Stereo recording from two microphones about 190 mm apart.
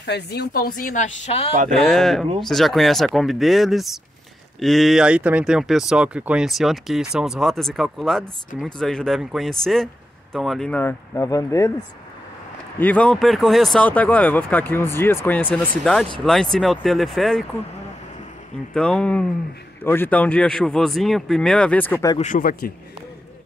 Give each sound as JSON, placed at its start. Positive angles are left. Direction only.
{"t": 0.0, "sound": "speech", "side_deg": 60}
{"t": 1.7, "sound": "speech", "side_deg": 0}
{"t": 12.7, "sound": "speech", "side_deg": 10}
{"t": 18.7, "sound": "speech", "side_deg": 5}
{"t": 22.2, "sound": "speech", "side_deg": 45}